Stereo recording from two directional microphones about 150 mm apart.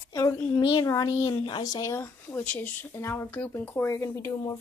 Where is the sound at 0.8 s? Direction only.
25° left (ahead or behind).